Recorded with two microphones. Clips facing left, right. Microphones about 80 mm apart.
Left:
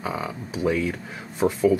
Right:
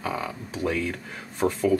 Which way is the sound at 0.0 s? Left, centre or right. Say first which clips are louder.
Left 1 dB; centre.